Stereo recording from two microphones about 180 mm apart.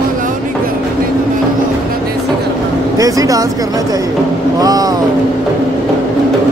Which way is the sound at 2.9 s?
20° right (ahead or behind).